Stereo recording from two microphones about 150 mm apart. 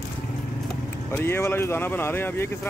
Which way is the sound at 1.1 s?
15° left (ahead or behind).